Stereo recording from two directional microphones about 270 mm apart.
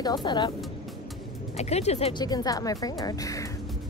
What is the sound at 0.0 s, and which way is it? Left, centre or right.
Speech, centre.